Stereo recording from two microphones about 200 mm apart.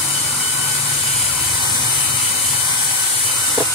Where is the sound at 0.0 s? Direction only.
25° left (ahead or behind).